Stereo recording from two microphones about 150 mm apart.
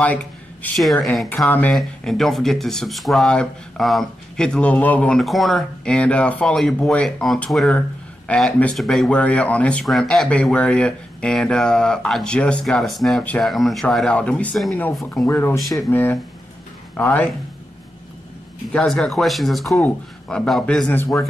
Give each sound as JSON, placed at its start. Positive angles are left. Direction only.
{"t": 0.0, "sound": "speech", "side_deg": 10}
{"t": 15.2, "sound": "speech", "side_deg": 20}
{"t": 18.7, "sound": "speech", "side_deg": 5}